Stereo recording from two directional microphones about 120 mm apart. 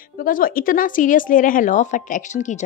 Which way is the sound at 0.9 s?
90° left.